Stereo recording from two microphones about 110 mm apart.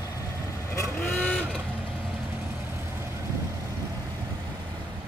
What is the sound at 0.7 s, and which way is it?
Vehicle, 25° left (ahead or behind).